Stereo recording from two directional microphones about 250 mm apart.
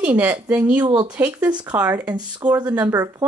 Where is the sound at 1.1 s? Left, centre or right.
Centre.